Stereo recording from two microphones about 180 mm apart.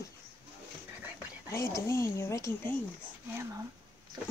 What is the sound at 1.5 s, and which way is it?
Speech, 15° left (ahead or behind).